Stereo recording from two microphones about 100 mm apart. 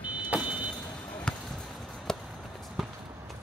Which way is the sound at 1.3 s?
5° left (ahead or behind).